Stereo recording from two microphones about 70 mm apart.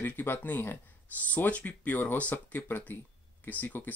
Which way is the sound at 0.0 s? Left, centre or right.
Left.